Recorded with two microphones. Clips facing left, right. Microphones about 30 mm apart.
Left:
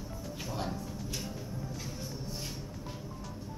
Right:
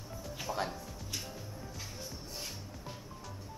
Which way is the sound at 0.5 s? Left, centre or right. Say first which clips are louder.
Right 2 dB; centre.